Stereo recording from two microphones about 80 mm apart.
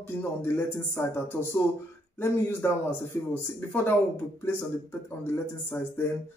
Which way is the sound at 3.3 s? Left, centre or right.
Left.